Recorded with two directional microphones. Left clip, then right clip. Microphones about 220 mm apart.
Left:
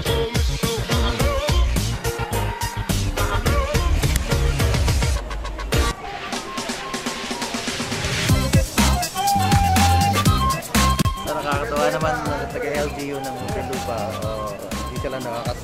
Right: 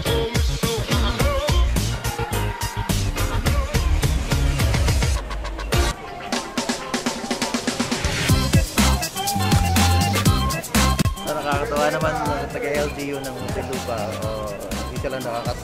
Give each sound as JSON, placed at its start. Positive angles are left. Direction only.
{"t": 0.0, "sound": "music", "side_deg": 0}
{"t": 13.8, "sound": "speech", "side_deg": 0}